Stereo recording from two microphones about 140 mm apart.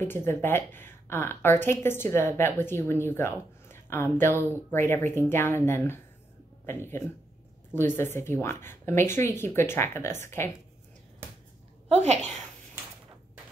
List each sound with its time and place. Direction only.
0.0 s speech: 15° left (ahead or behind)
11.9 s a child's voice: 55° right (ahead or behind)